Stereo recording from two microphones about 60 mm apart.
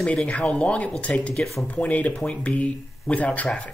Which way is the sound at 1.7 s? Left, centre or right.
Left.